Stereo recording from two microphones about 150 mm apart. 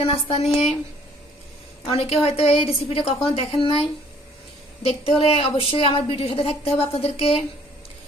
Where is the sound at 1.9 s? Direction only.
40° left (ahead or behind).